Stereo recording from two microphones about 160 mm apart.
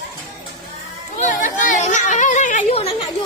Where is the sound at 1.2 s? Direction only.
55° left (ahead or behind).